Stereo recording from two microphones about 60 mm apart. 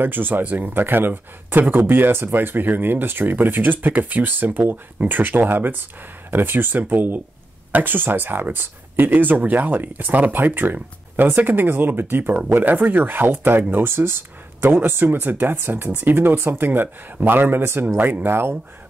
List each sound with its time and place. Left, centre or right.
0.0 s speech: right